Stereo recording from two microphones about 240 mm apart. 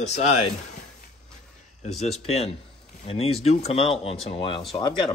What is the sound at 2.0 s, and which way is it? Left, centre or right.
Speech, left.